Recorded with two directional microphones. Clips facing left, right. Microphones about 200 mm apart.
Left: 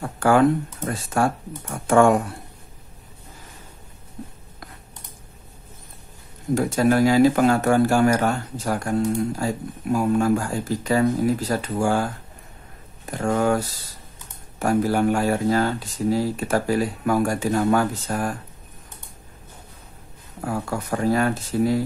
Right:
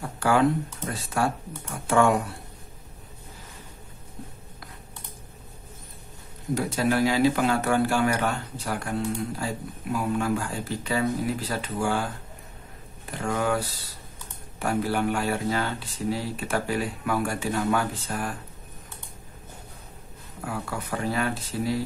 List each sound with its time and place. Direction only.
0.2 s speech: 50° left (ahead or behind)
6.5 s speech: 50° left (ahead or behind)
20.4 s speech: 45° left (ahead or behind)